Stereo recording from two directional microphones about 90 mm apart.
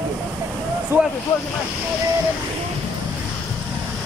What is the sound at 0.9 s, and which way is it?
Speech, 20° right (ahead or behind).